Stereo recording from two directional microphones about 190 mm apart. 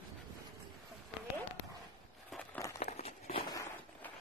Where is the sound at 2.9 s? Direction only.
35° left (ahead or behind).